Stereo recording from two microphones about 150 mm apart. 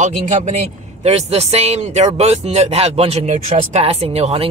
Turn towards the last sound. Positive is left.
turn(degrees=-40)  # may be behind; listen again after turning